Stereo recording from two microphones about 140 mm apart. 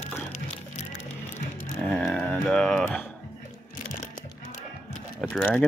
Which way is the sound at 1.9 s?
Centre (ahead or behind).